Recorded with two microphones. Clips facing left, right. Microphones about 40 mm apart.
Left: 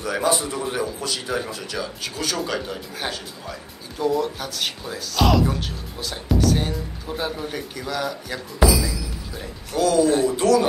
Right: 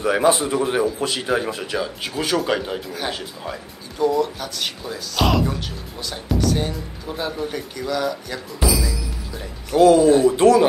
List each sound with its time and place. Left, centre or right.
0.0 s speech: right
4.0 s speech: centre
9.8 s speech: right